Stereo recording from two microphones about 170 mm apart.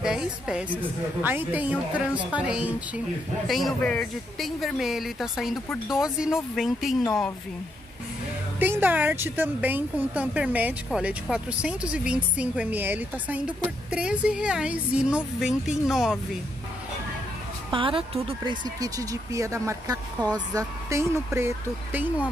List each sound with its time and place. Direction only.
0.0 s a woman's voice: 5° right (ahead or behind)
8.5 s a woman's voice: 10° right (ahead or behind)
17.6 s speech: 30° right (ahead or behind); by 22.0 s 15° right (ahead or behind)